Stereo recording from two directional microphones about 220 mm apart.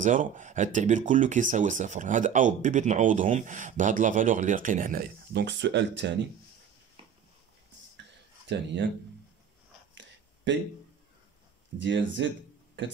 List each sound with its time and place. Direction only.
0.0 s speech: 35° right (ahead or behind); by 6.1 s 50° right (ahead or behind)
9.9 s a sound: 55° right (ahead or behind)
11.8 s speech: 55° right (ahead or behind)